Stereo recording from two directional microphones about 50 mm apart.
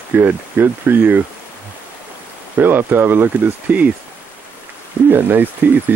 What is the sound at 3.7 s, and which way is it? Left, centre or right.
Speech, right.